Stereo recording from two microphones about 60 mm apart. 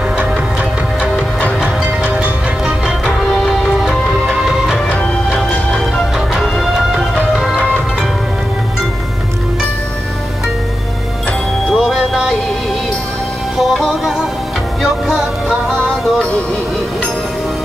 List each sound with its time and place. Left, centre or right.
3.3 s music: centre
4.3 s music: centre
4.8 s music: left
6.1 s music: centre
11.7 s music: centre
13.6 s music: centre